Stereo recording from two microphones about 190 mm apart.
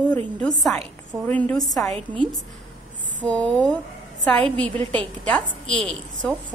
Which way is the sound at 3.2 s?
5° left (ahead or behind).